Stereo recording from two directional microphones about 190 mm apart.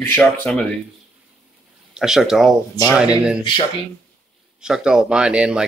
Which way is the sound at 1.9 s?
5° right (ahead or behind).